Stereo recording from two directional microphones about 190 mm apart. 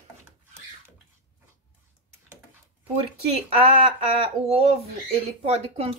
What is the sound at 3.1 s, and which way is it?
Speech, 30° right (ahead or behind).